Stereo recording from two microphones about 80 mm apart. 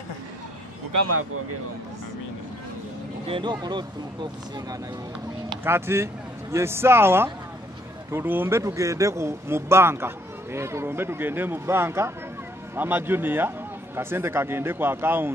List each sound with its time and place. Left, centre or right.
3.3 s speech: right
5.6 s a man's voice: right